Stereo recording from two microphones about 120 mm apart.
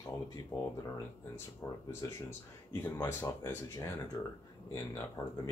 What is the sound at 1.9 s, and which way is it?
Speech, 25° left (ahead or behind).